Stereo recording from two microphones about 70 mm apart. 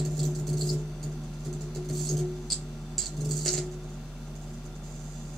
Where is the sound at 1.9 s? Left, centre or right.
Centre.